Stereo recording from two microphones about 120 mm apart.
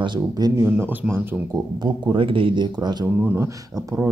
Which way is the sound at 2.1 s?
45° right (ahead or behind).